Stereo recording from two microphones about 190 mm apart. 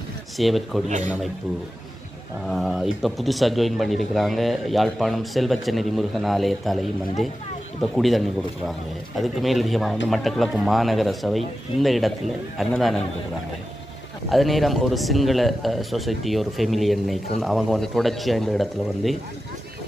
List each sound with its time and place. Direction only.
0.4 s speech: centre (ahead or behind)
0.8 s a man's voice: 40° right (ahead or behind)
2.4 s speech: centre (ahead or behind)
14.3 s speech: centre (ahead or behind)